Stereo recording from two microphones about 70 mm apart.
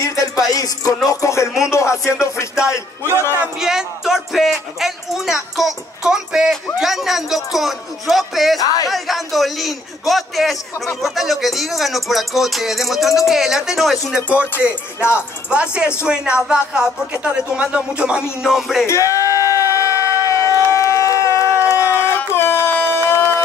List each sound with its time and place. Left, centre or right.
0.0 s music: left
1.0 s speech: left
3.5 s speech: centre
8.5 s music: left
8.8 s speech: centre
14.6 s speech: centre
18.4 s speech: centre
18.9 s a sound: left
21.6 s crowd: left
23.0 s music: left